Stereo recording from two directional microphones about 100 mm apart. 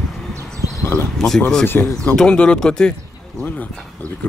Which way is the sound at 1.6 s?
15° left (ahead or behind).